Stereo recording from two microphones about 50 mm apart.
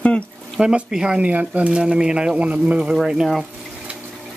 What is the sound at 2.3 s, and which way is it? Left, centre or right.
Speech, right.